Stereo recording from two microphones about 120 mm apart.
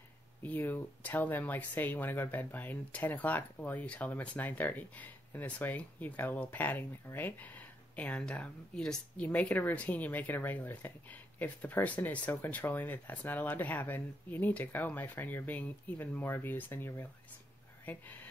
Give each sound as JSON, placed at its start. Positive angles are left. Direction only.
{"t": 0.4, "sound": "speech", "side_deg": 15}